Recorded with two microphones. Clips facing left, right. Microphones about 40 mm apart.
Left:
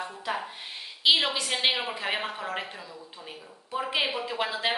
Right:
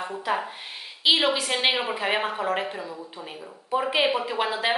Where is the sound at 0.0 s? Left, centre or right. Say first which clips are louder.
Right 5 dB; centre.